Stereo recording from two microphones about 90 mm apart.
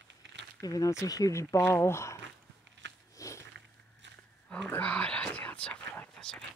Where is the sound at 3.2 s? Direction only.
35° left (ahead or behind).